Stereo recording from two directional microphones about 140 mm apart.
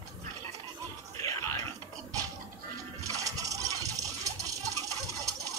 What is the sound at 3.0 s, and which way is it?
Rattle, 25° right (ahead or behind).